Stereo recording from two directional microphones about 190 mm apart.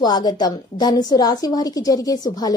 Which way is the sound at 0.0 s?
20° left (ahead or behind).